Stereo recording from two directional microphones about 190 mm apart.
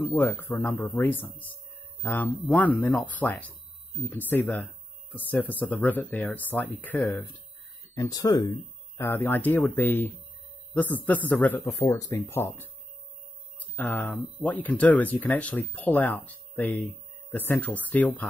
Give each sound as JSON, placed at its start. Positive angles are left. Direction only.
{"t": 0.0, "sound": "speech", "side_deg": 10}